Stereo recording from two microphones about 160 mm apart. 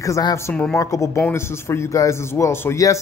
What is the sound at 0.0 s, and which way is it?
A man's voice, 20° left (ahead or behind).